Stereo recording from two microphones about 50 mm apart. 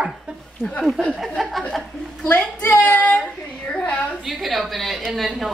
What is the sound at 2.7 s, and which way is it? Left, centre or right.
Speech, left.